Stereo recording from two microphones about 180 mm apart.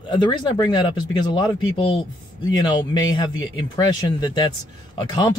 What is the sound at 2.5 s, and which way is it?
Speech, 25° left (ahead or behind).